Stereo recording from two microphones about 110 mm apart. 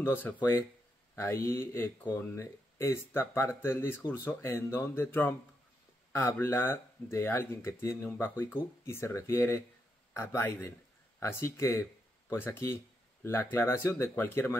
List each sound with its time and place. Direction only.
0.0 s speech: 20° left (ahead or behind)